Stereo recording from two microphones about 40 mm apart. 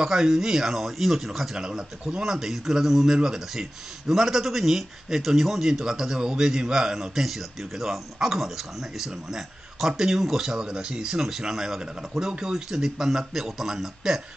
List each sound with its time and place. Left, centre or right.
0.0 s speech: centre
1.6 s speech: centre
7.2 s speech: centre
10.6 s speech: right
11.2 s speech: centre